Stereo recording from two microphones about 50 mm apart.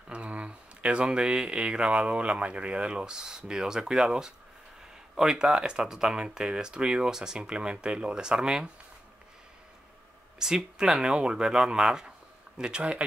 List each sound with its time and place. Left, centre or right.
0.1 s speech: right
10.4 s speech: centre